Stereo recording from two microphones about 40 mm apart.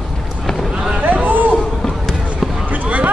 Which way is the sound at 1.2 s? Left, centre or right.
Right.